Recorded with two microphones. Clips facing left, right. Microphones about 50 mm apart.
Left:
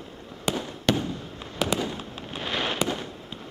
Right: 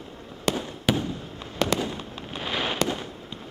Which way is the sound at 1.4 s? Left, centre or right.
Centre.